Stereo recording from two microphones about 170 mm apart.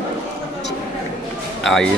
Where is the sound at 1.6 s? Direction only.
Centre (ahead or behind).